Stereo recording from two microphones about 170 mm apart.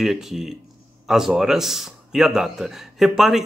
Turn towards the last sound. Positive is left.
turn(degrees=0)  # may be behind; listen again after turning